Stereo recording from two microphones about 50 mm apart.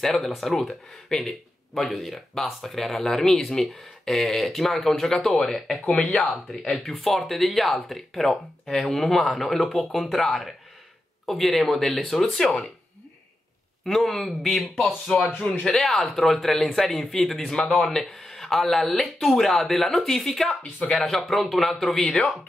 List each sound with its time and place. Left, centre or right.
0.0 s speech: centre
13.8 s speech: centre
15.1 s a man's voice: left
15.6 s speech: centre